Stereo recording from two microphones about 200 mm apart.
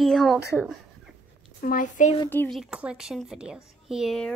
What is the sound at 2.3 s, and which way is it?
Speech, 10° left (ahead or behind).